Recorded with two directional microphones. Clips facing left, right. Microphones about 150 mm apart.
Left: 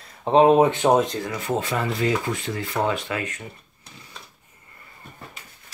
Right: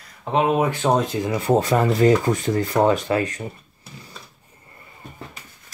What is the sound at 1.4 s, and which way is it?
Speech, 40° right (ahead or behind).